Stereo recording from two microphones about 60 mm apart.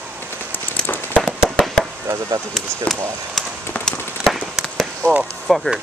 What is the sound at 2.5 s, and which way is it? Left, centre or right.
Speech, centre.